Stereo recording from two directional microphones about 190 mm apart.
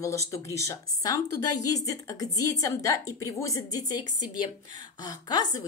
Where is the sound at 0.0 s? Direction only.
15° left (ahead or behind).